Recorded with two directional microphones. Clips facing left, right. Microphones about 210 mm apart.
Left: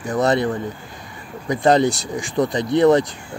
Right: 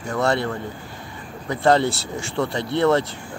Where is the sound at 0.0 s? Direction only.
20° left (ahead or behind).